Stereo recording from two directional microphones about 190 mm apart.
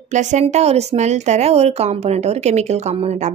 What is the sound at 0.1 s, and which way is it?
A woman's voice, 40° right (ahead or behind).